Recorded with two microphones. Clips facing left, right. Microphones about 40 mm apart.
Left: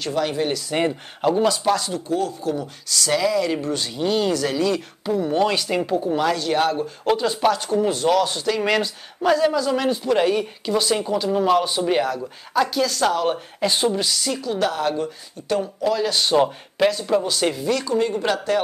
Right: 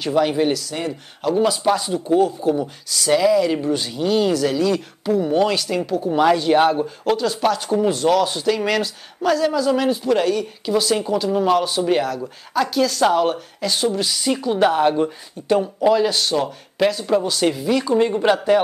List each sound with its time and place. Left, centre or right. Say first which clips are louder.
0.0 s speech: right 4 dB; centre
0.7 s speech: left 4 dB; left
1.4 s speech: right 1 dB; centre
5.6 s speech: even; centre
6.0 s speech: right 5 dB; centre
7.2 s speech: even; centre
13.6 s speech: left 1 dB; left
13.9 s speech: right 1 dB; centre
14.2 s speech: right 5 dB; centre
15.4 s speech: right 5 dB; centre
16.4 s speech: even; centre
17.7 s speech: right 4 dB; centre